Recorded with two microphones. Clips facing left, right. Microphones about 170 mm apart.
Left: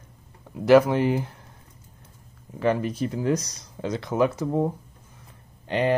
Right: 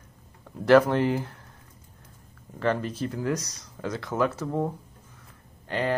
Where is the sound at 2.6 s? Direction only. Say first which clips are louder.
Left 3 dB; 15° left (ahead or behind).